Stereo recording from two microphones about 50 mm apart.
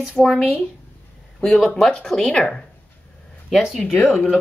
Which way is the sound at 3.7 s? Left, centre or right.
Centre.